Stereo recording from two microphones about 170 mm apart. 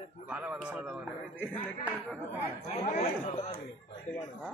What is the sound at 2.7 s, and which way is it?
Speech, 45° left (ahead or behind).